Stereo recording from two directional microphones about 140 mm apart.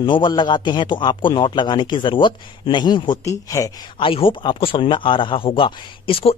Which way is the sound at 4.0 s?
40° left (ahead or behind).